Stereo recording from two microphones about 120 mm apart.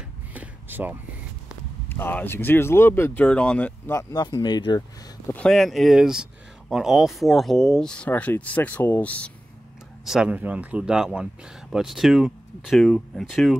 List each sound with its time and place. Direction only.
0.3 s a sound: 15° right (ahead or behind)
1.9 s speech: 15° left (ahead or behind)
3.9 s speech: 30° left (ahead or behind)
5.3 s speech: 5° left (ahead or behind)
10.0 s speech: 5° right (ahead or behind)